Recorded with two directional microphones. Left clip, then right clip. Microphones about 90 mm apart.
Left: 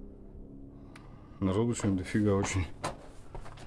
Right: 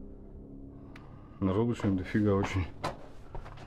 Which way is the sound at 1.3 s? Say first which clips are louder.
Even; 25° left (ahead or behind).